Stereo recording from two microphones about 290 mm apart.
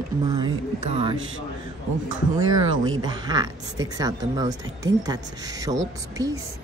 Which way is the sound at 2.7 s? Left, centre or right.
Right.